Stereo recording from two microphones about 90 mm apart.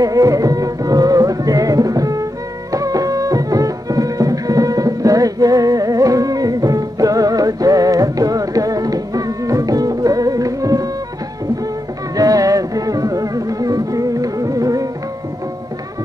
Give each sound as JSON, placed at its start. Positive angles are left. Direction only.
{"t": 0.0, "sound": "music", "side_deg": -40}
{"t": 12.2, "sound": "music", "side_deg": -40}